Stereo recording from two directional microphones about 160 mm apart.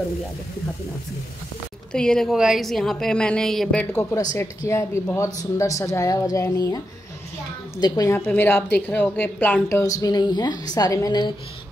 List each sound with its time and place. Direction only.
1.9 s a woman's voice: 5° left (ahead or behind)
3.9 s a woman's voice: 15° left (ahead or behind)
7.8 s a woman's voice: 25° left (ahead or behind)